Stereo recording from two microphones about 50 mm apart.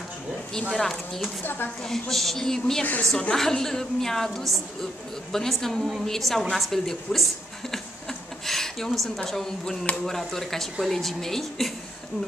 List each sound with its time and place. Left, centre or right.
0.7 s speech: centre
1.4 s a woman's voice: left
1.8 s a woman's voice: centre